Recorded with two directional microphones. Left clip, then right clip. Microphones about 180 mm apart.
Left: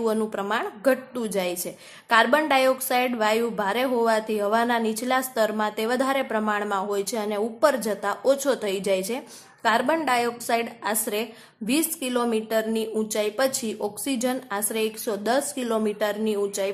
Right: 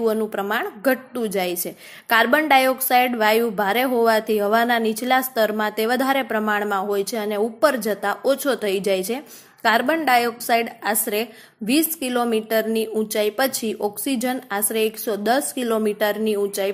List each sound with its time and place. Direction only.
0.0 s a woman's voice: 15° right (ahead or behind)